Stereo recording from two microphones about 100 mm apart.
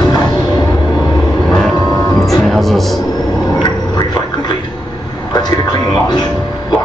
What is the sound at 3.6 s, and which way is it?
Gargling, 45° left (ahead or behind).